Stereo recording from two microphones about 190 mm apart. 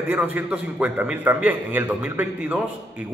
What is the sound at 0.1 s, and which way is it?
A man's voice, 10° right (ahead or behind).